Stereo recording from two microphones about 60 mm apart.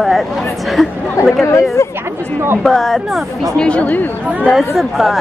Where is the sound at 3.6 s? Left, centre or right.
Centre.